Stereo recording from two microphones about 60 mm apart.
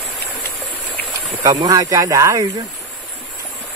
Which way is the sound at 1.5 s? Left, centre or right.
Right.